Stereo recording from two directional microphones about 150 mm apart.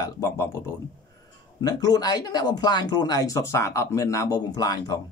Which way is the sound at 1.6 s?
25° left (ahead or behind).